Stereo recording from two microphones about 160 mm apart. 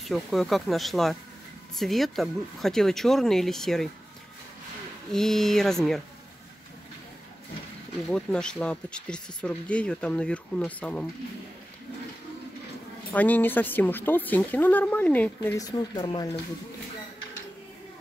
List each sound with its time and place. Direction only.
0.1 s speech: centre (ahead or behind)
5.1 s speech: 5° left (ahead or behind)
8.1 s speech: 5° left (ahead or behind)
13.1 s speech: 10° left (ahead or behind)
15.5 s speech: 25° left (ahead or behind)